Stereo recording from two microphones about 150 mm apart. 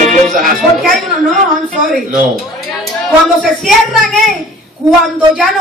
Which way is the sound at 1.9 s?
Centre (ahead or behind).